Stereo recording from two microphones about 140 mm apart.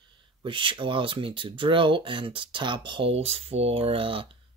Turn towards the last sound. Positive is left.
turn(degrees=-40)  # may be behind; listen again after turning